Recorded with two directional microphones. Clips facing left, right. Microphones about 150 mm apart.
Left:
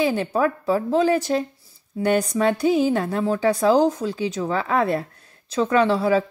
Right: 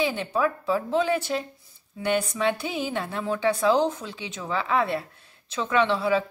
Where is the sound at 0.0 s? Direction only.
40° left (ahead or behind).